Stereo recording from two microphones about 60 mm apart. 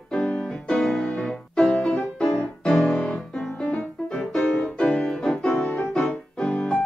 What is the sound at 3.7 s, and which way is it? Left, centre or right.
Music, left.